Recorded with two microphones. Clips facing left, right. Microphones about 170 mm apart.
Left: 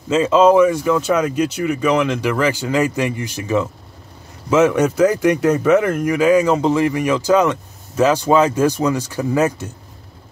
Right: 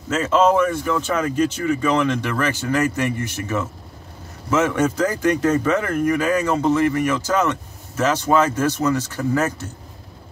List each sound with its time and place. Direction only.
0.1 s speech: 15° left (ahead or behind)